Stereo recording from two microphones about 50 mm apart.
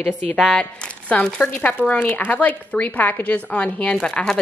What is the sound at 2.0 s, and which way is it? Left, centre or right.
A woman's voice, left.